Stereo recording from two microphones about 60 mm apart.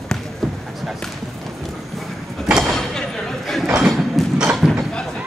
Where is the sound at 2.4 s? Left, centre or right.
Centre.